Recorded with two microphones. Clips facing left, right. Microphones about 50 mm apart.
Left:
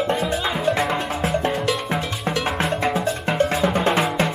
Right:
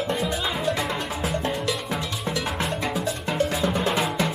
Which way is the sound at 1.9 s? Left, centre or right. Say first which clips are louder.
Left 4 dB; left.